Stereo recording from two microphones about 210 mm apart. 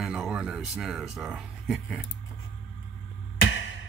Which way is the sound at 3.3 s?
60° left (ahead or behind).